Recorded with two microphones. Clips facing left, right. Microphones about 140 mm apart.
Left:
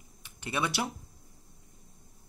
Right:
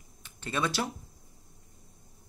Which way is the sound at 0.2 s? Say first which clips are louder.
Right 1 dB; 15° left (ahead or behind).